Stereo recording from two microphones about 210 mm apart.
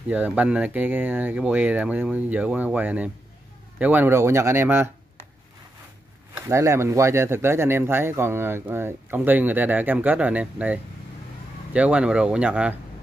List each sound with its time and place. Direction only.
0.1 s speech: 5° right (ahead or behind)
6.3 s speech: 15° right (ahead or behind)